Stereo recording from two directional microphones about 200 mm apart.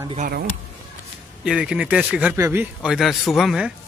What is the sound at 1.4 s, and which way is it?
A man's voice, 5° right (ahead or behind).